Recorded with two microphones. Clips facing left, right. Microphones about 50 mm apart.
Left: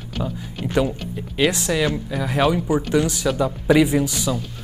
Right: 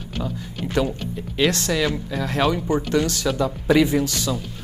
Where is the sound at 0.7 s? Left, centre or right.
Centre.